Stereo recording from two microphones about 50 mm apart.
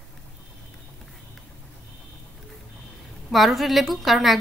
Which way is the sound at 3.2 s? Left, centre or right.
Centre.